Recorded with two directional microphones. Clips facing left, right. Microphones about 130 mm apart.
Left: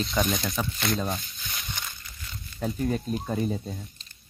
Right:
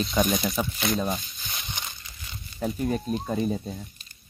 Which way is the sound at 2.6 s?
20° right (ahead or behind).